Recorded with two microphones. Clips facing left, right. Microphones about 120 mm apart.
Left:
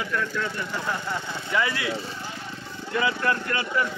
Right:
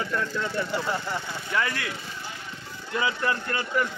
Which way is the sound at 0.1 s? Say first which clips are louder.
Left 1 dB; 25° right (ahead or behind).